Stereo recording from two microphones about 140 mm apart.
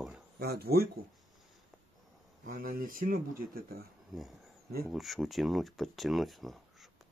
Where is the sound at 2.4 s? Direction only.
90° right.